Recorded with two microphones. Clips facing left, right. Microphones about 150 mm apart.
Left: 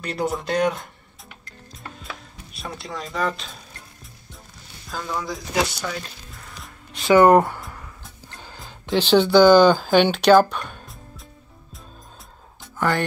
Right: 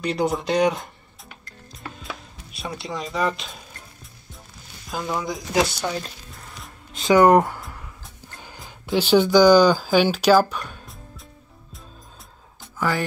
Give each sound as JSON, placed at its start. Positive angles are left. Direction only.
{"t": 0.0, "sound": "speech", "side_deg": 5}
{"t": 2.9, "sound": "speech", "side_deg": -5}
{"t": 4.9, "sound": "speech", "side_deg": -15}
{"t": 7.0, "sound": "speech", "side_deg": -15}
{"t": 7.6, "sound": "a sound", "side_deg": 0}
{"t": 8.8, "sound": "speech", "side_deg": -10}
{"t": 12.7, "sound": "speech", "side_deg": -5}